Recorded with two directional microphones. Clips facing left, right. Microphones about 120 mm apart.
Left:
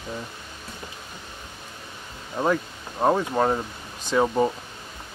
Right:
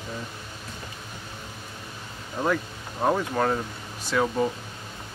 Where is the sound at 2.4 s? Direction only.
20° left (ahead or behind).